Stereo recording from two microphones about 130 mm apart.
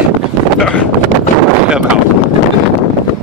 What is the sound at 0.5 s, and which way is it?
Wind noise, 5° left (ahead or behind).